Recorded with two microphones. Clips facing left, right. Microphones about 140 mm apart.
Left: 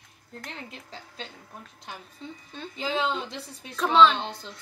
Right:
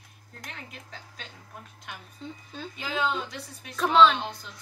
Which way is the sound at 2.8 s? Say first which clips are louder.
Left 2 dB; 25° left (ahead or behind).